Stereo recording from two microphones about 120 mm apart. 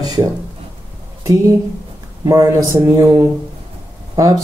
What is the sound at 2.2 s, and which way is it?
Speech, 30° right (ahead or behind).